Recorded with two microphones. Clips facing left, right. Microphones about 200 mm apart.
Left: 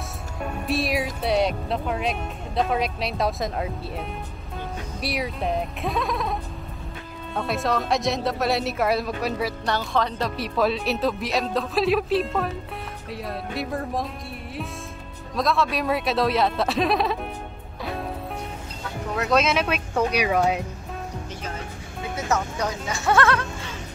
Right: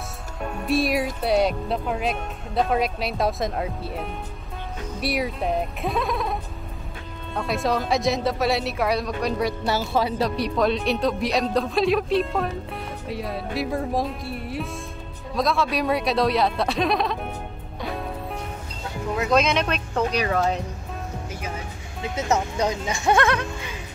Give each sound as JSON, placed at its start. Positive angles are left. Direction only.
{"t": 0.7, "sound": "speech", "side_deg": 0}
{"t": 7.3, "sound": "speech", "side_deg": 0}
{"t": 9.7, "sound": "speech", "side_deg": -5}
{"t": 19.1, "sound": "speech", "side_deg": 0}
{"t": 22.1, "sound": "speech", "side_deg": -20}